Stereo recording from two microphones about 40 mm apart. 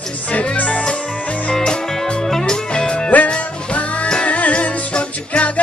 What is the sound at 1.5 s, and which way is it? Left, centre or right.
Music, centre.